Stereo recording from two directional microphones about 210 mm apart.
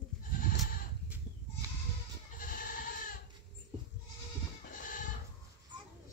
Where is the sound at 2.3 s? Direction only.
40° left (ahead or behind).